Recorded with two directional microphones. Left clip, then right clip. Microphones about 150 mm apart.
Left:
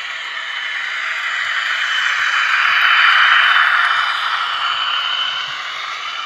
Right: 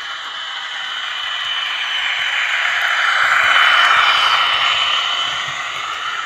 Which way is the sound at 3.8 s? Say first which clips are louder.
Right 4 dB; 90° right.